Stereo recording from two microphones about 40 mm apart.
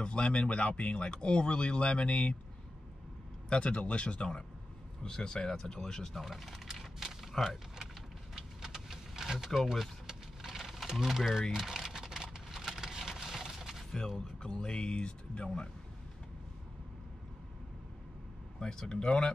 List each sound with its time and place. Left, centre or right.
0.0 s speech: left
3.4 s speech: left
6.2 s speech: centre
7.4 s speech: centre
8.4 s vehicle: centre
10.0 s a sound: centre
11.1 s speech: centre
11.5 s a sound: centre
13.9 s speech: centre
18.6 s speech: centre